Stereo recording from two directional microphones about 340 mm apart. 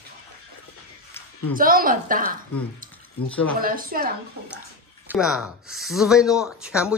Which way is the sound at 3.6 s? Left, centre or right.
Right.